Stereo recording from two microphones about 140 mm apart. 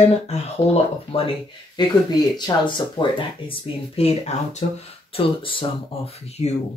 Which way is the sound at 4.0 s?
50° left (ahead or behind).